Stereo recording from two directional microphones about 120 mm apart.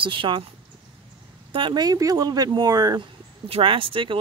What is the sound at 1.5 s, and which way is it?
Speech, 40° right (ahead or behind).